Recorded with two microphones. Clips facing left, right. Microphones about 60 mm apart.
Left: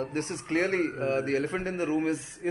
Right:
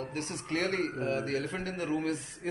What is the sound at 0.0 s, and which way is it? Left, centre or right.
A man's voice, left.